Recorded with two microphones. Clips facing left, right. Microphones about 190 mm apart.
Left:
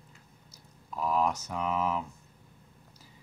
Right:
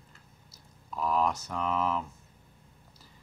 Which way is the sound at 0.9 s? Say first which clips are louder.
Even; 10° left (ahead or behind).